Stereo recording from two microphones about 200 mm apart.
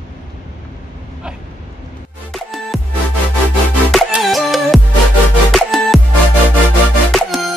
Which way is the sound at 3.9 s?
Centre (ahead or behind).